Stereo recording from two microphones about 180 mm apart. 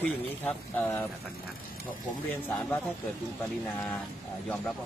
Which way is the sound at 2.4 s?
10° left (ahead or behind).